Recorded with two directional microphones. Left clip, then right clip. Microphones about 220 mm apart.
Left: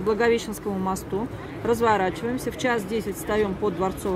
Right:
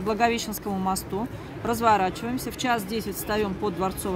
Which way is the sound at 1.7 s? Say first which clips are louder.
Even; 30° right (ahead or behind).